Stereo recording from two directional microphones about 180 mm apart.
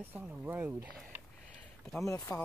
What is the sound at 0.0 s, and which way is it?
Speech, 10° right (ahead or behind).